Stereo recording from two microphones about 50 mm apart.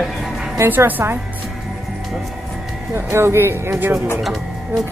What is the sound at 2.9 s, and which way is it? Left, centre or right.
Speech, right.